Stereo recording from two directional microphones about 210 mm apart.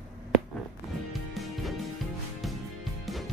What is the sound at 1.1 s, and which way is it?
Music, centre (ahead or behind).